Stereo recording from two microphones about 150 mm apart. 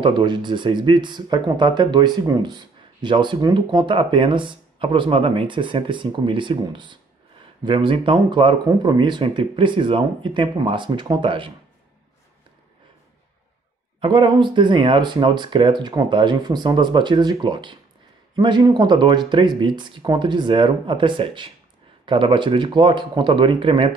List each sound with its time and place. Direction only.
0.0 s speech: 30° right (ahead or behind)
14.0 s speech: 30° right (ahead or behind)